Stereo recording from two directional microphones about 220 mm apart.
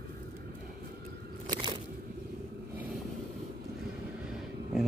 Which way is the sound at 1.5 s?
20° right (ahead or behind).